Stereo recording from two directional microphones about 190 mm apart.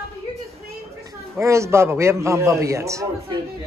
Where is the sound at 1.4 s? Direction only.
15° right (ahead or behind).